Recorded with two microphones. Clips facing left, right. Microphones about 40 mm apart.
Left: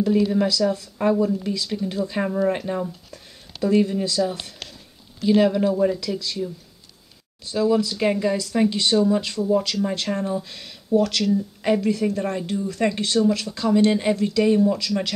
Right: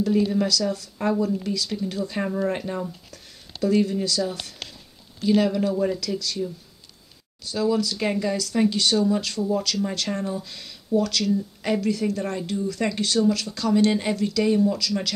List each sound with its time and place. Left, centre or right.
0.3 s speech: centre
11.3 s speech: centre
12.2 s speech: centre
12.6 s speech: left